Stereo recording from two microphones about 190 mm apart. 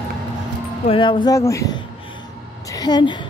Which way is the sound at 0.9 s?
25° left (ahead or behind).